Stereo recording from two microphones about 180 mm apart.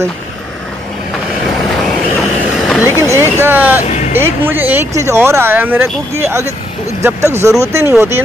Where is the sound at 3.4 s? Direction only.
10° right (ahead or behind).